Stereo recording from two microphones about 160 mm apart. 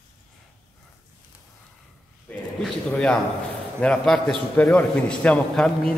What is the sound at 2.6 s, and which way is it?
A man's voice, 5° left (ahead or behind).